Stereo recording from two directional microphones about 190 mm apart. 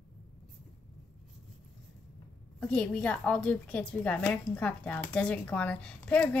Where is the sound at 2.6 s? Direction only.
5° left (ahead or behind).